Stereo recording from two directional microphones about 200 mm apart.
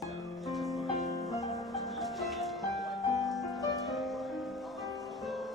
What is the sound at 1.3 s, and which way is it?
Music, 15° left (ahead or behind).